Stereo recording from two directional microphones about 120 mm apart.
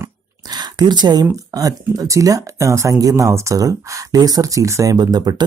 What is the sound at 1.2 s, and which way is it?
Speech, 30° right (ahead or behind).